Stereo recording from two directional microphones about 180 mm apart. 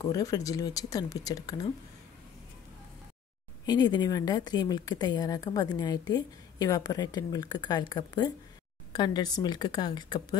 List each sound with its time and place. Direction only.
0.0 s a woman's voice: 20° left (ahead or behind)
3.6 s a woman's voice: 20° left (ahead or behind)